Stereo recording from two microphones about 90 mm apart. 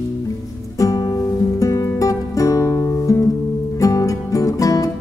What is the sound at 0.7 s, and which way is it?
Music, 40° left (ahead or behind).